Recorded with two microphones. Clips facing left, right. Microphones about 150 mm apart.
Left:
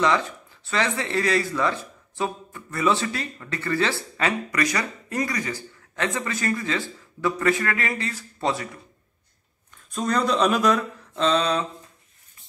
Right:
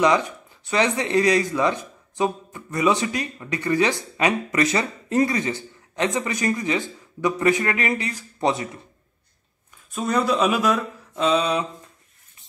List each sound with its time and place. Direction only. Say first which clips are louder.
0.0 s speech: right 3 dB; 15° right (ahead or behind)
9.8 s speech: right 1 dB; 5° right (ahead or behind)